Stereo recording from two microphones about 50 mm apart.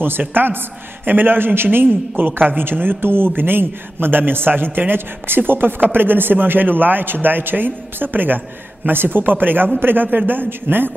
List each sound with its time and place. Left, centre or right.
0.2 s a man's voice: right